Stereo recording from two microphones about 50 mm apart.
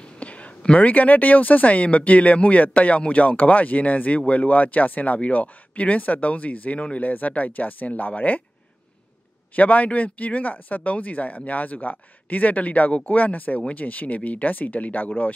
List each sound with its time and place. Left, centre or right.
0.2 s speech: left
9.6 s speech: left